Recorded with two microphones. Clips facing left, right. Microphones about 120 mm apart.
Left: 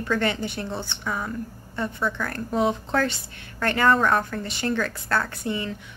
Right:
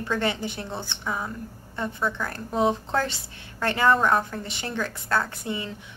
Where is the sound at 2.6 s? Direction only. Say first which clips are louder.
Even; 25° right (ahead or behind).